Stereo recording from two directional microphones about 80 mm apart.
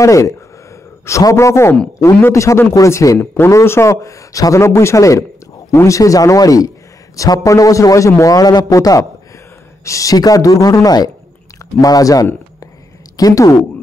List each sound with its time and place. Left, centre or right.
0.0 s a man's voice: left
3.2 s a man's voice: left